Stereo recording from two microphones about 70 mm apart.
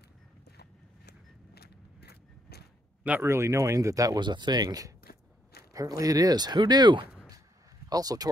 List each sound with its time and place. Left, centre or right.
3.0 s a sound: right
3.3 s chopping: right
5.7 s speech: right
7.9 s chopping: right